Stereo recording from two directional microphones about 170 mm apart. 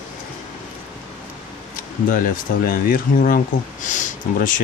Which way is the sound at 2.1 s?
55° left (ahead or behind).